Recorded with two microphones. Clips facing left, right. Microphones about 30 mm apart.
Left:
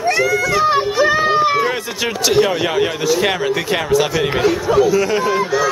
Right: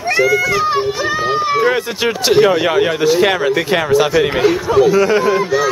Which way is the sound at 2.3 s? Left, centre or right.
Centre.